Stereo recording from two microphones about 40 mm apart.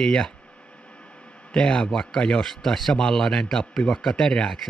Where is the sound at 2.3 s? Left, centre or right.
Centre.